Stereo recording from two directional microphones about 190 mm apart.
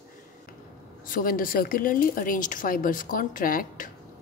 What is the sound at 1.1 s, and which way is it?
A woman's voice, 50° left (ahead or behind).